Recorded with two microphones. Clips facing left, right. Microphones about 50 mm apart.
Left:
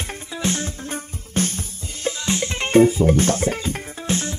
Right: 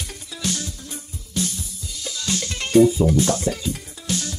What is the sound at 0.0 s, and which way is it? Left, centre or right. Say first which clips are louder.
Music: left 4 dB; left.